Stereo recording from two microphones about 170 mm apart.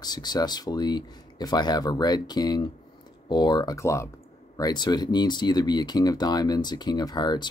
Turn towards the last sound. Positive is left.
turn(degrees=25)  # may be behind; listen again after turning